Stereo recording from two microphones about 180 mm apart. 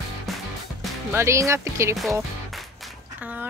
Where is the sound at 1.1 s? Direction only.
15° right (ahead or behind).